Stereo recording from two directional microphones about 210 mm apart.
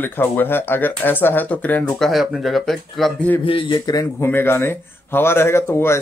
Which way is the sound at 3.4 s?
25° left (ahead or behind).